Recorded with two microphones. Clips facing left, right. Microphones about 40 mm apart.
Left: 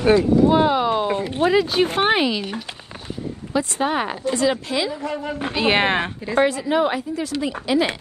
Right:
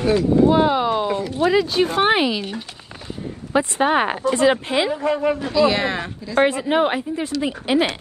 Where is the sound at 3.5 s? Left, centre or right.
Right.